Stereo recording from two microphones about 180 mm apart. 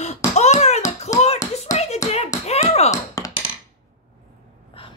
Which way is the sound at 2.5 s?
40° left (ahead or behind).